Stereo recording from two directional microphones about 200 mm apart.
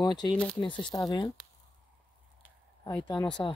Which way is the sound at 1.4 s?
5° right (ahead or behind).